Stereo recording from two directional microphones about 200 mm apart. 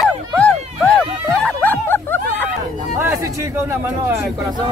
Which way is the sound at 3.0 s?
10° right (ahead or behind).